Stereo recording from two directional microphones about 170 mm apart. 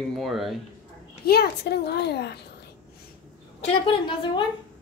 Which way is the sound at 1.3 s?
70° left (ahead or behind).